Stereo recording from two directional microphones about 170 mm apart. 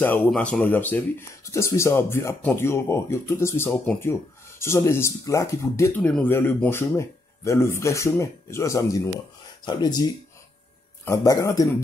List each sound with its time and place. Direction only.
0.0 s speech: 10° left (ahead or behind)
11.1 s speech: 20° left (ahead or behind)